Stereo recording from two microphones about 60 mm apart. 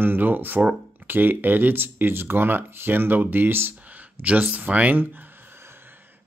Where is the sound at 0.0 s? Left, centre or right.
Right.